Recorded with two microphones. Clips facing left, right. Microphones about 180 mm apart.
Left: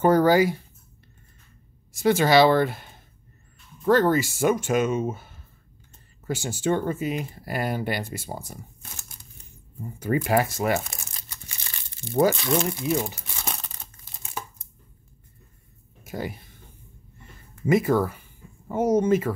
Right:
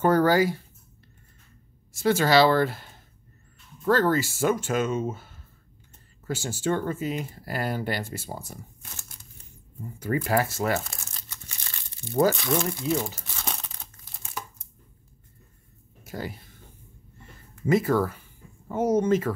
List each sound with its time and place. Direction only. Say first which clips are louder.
0.0 s speech: left 2 dB; 15° left (ahead or behind)
1.9 s speech: left 2 dB; 15° left (ahead or behind)
9.9 s speech: left 2 dB; 20° left (ahead or behind)
13.6 s crumpling: left 1 dB; centre (ahead or behind)
16.0 s a sound: left 3 dB; 15° left (ahead or behind)
17.6 s speech: left 1 dB; 15° left (ahead or behind)